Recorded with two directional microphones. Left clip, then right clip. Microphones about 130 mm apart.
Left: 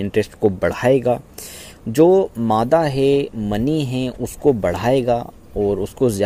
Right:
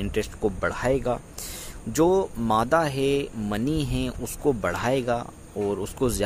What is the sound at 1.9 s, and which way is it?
Speech, 40° left (ahead or behind).